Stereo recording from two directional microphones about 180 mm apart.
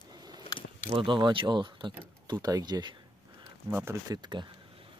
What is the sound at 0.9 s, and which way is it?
Speech, 25° right (ahead or behind).